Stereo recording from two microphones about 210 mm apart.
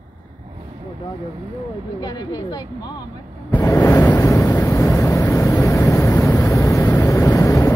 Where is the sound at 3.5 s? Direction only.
15° left (ahead or behind).